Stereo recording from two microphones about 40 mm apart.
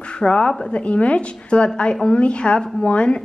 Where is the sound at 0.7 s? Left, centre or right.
Left.